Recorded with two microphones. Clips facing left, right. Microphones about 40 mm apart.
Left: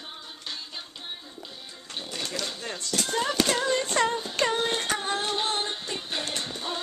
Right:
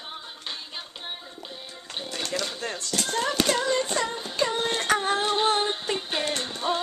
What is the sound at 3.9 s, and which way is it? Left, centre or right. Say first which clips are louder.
Music: left 3 dB; left.